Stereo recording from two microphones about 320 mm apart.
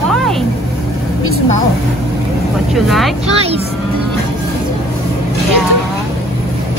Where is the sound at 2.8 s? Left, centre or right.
Centre.